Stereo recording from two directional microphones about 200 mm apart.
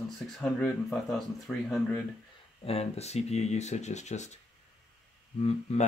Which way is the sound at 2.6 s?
30° left (ahead or behind).